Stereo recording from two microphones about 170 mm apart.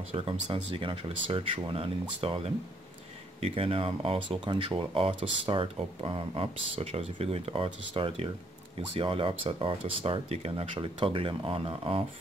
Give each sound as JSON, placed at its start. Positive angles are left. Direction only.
{"t": 0.1, "sound": "speech", "side_deg": -35}